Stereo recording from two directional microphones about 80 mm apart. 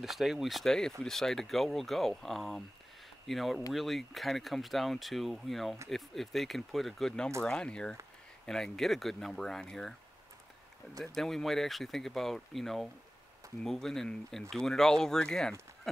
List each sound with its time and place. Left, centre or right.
0.0 s speech: centre
11.1 s speech: centre